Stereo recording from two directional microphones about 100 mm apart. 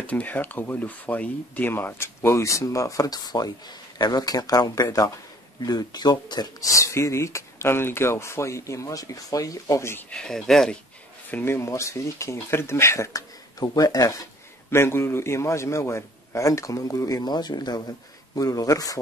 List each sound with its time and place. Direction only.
0.0 s a man's voice: 15° left (ahead or behind); by 6.5 s 45° left (ahead or behind)
6.9 s speech: 30° left (ahead or behind)
10.1 s speech: 5° left (ahead or behind)
11.2 s speech: 20° left (ahead or behind); by 14.2 s 35° left (ahead or behind)
14.7 s a man's voice: 25° left (ahead or behind)